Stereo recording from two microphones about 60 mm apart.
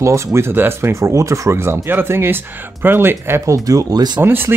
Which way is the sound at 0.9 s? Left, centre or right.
Right.